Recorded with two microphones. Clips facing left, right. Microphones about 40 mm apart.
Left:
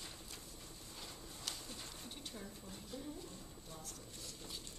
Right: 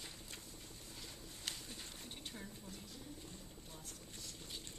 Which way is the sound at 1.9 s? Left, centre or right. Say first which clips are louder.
Left 1 dB; right.